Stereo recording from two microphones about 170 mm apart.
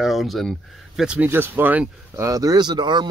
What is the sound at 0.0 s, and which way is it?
Speech, centre (ahead or behind).